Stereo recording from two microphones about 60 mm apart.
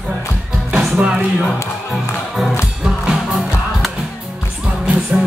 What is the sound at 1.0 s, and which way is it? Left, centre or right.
Speech, centre.